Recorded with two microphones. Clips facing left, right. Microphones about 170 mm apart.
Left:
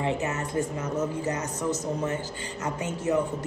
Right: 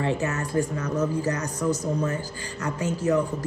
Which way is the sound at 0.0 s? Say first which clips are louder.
Right 2 dB; 20° left (ahead or behind).